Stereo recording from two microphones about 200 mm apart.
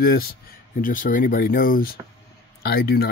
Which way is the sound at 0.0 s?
50° left (ahead or behind).